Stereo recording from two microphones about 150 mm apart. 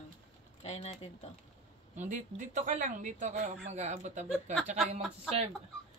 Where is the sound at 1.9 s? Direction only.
55° right (ahead or behind).